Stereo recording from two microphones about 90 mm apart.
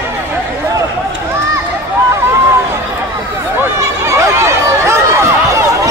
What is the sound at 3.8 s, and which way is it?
Chatter, 35° right (ahead or behind).